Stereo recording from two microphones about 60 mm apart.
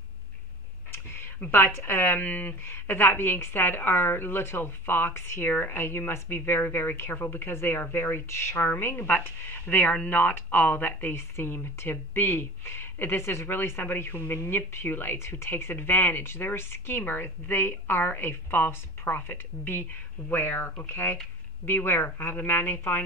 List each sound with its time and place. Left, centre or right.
0.9 s a sound: left
1.4 s speech: left
15.1 s speech: left